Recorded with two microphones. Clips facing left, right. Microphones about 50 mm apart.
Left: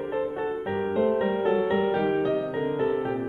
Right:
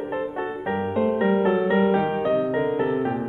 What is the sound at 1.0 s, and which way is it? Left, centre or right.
Music, right.